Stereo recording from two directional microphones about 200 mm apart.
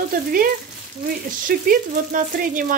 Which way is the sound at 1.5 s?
45° right (ahead or behind).